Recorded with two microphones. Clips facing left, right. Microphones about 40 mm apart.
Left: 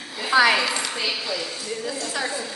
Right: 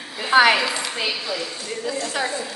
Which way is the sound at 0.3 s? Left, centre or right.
Right.